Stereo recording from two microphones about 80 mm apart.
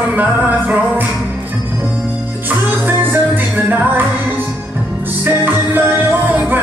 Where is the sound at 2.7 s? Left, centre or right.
Right.